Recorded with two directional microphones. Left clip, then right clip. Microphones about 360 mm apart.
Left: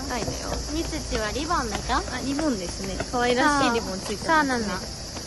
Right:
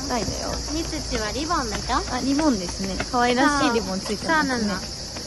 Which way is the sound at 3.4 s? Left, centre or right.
Centre.